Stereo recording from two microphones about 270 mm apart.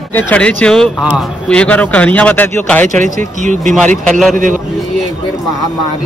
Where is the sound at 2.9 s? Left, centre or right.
Right.